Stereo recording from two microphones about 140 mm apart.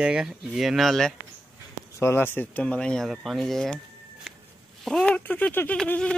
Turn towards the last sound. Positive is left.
turn(degrees=5)  # may be behind; listen again after turning